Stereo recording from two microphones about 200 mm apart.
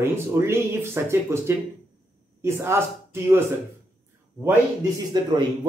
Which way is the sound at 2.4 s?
10° right (ahead or behind).